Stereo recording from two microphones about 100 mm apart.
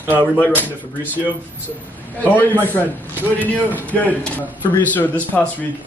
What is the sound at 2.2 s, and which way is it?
Speech, 20° left (ahead or behind).